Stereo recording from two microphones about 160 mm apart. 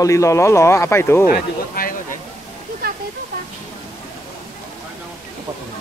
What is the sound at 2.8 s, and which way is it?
Waterfall, 70° right (ahead or behind).